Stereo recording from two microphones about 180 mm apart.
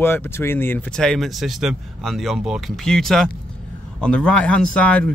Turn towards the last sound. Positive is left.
turn(degrees=5)  # may be behind; listen again after turning